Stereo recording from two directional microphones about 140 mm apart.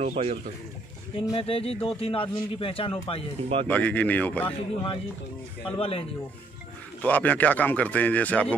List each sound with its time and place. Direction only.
0.0 s speech: 55° right (ahead or behind)
1.3 s a man's voice: 45° left (ahead or behind)
3.6 s speech: 10° left (ahead or behind)
4.5 s a man's voice: 40° left (ahead or behind)
7.0 s speech: 10° left (ahead or behind)